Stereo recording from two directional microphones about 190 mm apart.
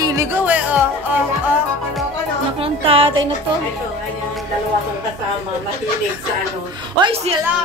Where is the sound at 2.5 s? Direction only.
30° right (ahead or behind).